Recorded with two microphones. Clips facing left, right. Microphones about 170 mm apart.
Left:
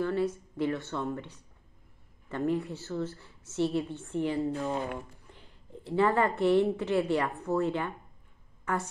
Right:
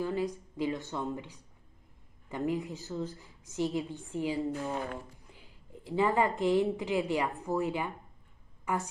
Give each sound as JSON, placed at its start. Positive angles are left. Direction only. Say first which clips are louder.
{"t": 0.0, "sound": "a woman's voice", "louder": "left 3 dB", "side_deg": -15}
{"t": 4.6, "sound": "speech", "louder": "left 3 dB", "side_deg": 35}
{"t": 5.3, "sound": "a woman's voice", "louder": "left 3 dB", "side_deg": -10}